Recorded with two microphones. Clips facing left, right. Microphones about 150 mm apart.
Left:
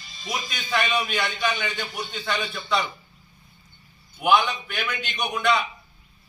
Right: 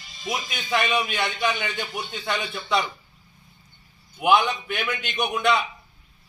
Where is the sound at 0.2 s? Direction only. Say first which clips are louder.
Right 2 dB; 15° right (ahead or behind).